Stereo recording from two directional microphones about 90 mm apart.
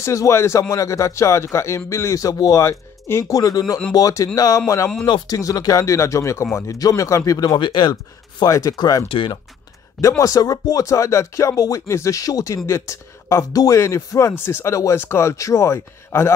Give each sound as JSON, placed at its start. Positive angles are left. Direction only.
{"t": 0.0, "sound": "speech", "side_deg": 35}
{"t": 5.0, "sound": "speech", "side_deg": 50}
{"t": 7.9, "sound": "speech", "side_deg": 40}
{"t": 9.1, "sound": "speech", "side_deg": 80}
{"t": 10.0, "sound": "speech", "side_deg": 40}